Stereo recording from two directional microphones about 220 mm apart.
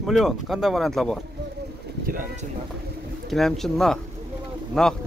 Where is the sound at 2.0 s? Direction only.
40° right (ahead or behind).